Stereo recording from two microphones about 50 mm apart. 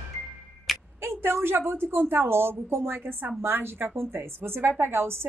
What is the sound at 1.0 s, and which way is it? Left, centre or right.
A woman's voice, right.